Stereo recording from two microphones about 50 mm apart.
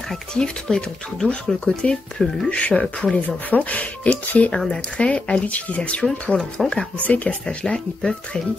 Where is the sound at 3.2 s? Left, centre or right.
Left.